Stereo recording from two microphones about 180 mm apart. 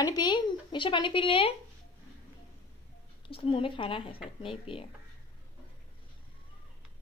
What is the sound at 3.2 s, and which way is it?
Speech, 30° left (ahead or behind).